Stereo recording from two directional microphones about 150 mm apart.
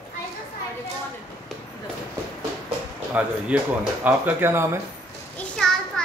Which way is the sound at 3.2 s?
10° right (ahead or behind).